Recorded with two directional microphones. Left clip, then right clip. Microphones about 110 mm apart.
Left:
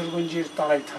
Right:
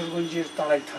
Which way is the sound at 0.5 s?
Centre (ahead or behind).